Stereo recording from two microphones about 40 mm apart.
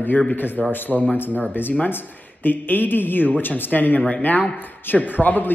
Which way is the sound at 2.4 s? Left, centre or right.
Left.